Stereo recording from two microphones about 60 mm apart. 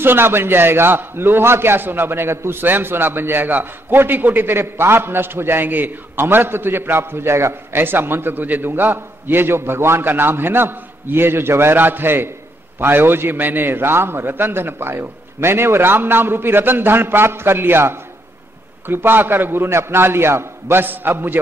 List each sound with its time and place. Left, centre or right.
0.0 s a man's voice: right
20.8 s a man's voice: right